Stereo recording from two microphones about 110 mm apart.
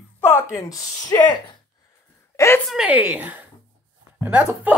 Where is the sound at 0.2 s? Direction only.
25° left (ahead or behind).